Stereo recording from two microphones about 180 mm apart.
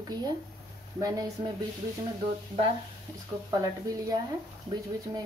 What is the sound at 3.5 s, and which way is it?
Speech, 20° right (ahead or behind).